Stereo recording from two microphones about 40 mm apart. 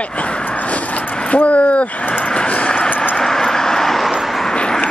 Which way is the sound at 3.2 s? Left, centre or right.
Centre.